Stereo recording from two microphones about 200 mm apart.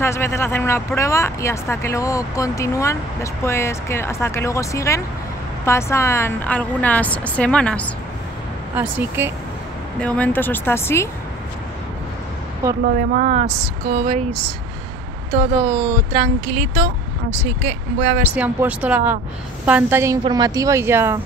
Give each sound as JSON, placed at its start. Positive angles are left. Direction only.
{"t": 0.0, "sound": "speech", "side_deg": 15}
{"t": 8.7, "sound": "a woman's voice", "side_deg": -10}
{"t": 9.9, "sound": "speech", "side_deg": 5}
{"t": 12.8, "sound": "speech", "side_deg": -45}
{"t": 16.1, "sound": "speech", "side_deg": -35}
{"t": 18.3, "sound": "a woman's voice", "side_deg": -10}